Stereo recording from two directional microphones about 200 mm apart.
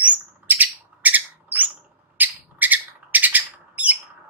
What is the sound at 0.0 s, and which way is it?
Bird, 10° right (ahead or behind).